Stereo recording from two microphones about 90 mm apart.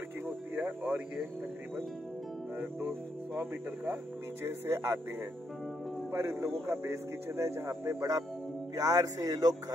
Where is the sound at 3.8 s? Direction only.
25° right (ahead or behind).